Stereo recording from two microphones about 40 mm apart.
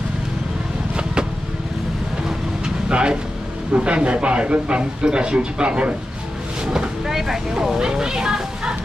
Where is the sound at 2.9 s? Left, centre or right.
Right.